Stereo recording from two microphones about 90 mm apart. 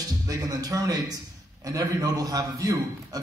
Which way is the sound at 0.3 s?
40° right (ahead or behind).